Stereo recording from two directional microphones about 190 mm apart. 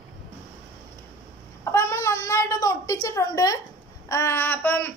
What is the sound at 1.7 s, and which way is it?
A child's voice, 15° left (ahead or behind).